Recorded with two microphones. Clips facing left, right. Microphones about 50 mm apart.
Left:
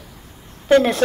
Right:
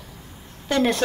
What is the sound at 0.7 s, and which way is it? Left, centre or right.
Speech, left.